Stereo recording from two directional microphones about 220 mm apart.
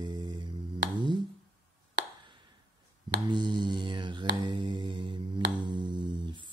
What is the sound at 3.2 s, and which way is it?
Speech, 20° right (ahead or behind).